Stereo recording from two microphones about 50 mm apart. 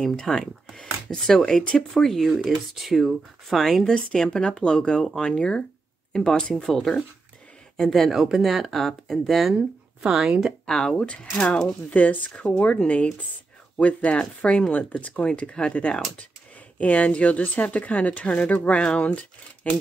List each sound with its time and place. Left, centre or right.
0.1 s speech: centre
3.8 s speech: centre
10.0 s speech: centre
10.7 s speech: centre
11.9 s speech: left
15.2 s speech: centre